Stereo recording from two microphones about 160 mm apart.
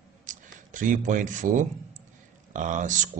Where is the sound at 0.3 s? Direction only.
55° right (ahead or behind).